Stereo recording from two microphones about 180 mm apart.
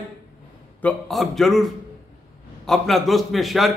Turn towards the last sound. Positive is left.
turn(degrees=0)  # may be behind; listen again after turning